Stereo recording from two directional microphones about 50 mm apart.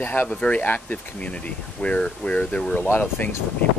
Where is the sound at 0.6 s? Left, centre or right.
Left.